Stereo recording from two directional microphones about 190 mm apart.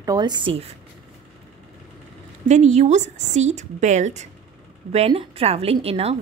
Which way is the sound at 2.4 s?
35° right (ahead or behind).